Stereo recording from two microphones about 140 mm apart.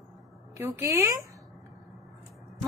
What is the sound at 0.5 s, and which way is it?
Speech, 15° right (ahead or behind).